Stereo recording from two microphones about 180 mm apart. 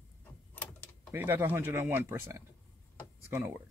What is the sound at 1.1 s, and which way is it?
Speech, 10° right (ahead or behind).